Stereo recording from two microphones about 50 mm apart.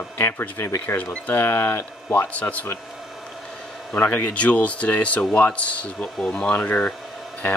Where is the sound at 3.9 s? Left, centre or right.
Left.